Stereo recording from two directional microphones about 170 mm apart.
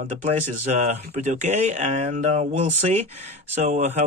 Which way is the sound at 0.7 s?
45° right (ahead or behind).